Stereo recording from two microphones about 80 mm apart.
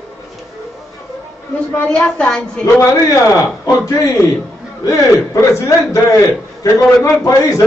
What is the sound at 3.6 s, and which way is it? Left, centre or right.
A man's voice, left.